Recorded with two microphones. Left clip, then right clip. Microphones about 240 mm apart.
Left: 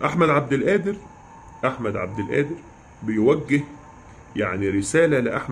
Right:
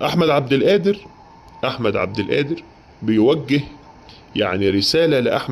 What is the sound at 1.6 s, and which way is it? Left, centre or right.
Speech, right.